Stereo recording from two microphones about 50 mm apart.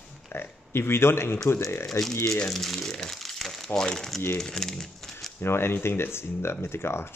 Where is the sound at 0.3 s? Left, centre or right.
Left.